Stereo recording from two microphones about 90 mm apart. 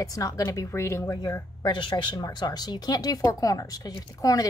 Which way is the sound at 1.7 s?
60° left (ahead or behind).